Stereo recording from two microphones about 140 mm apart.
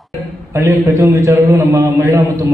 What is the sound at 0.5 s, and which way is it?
A man's voice, 20° right (ahead or behind).